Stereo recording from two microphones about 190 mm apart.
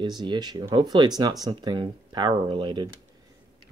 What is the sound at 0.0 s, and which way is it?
Speech, 25° right (ahead or behind).